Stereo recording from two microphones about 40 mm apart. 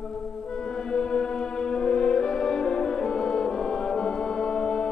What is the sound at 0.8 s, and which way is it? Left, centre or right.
Music, left.